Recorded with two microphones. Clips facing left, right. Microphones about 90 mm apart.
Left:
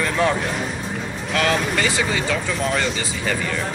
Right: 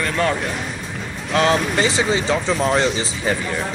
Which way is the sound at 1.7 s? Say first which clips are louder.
Right 3 dB; 25° right (ahead or behind).